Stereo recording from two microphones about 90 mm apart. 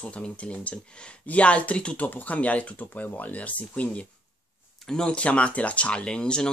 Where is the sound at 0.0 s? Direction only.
10° left (ahead or behind).